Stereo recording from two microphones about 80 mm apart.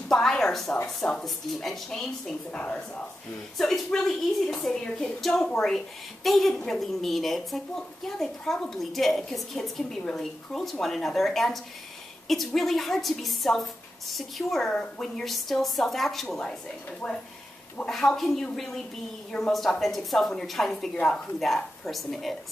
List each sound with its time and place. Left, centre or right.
0.1 s a sound: centre
0.8 s a woman's voice: centre
17.0 s speech: centre
17.8 s a woman's voice: centre